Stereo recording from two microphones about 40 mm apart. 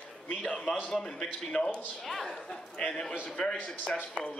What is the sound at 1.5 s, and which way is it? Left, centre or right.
Speech, left.